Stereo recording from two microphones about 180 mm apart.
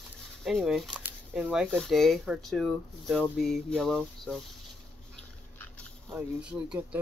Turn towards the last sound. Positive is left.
turn(degrees=-5)  # may be behind; listen again after turning